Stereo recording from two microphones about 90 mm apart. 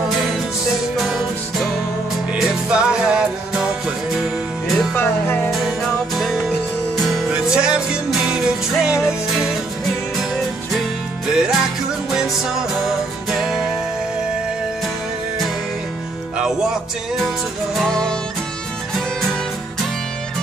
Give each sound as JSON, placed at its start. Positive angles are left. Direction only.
{"t": 0.9, "sound": "music", "side_deg": 0}
{"t": 4.9, "sound": "music", "side_deg": 25}
{"t": 5.5, "sound": "music", "side_deg": 0}
{"t": 10.7, "sound": "music", "side_deg": -5}
{"t": 17.8, "sound": "music", "side_deg": 5}